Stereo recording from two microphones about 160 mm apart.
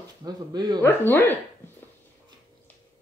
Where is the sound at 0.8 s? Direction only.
15° left (ahead or behind).